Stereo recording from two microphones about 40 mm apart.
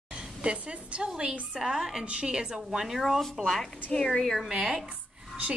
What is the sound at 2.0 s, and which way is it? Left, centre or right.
Speech, right.